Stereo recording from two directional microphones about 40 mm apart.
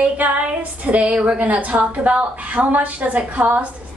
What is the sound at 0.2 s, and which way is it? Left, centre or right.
A woman's voice, right.